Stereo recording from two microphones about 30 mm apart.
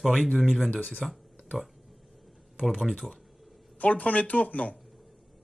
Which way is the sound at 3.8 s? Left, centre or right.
Left.